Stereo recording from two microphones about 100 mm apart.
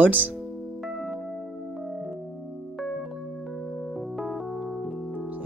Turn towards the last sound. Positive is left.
turn(degrees=0)  # may be behind; listen again after turning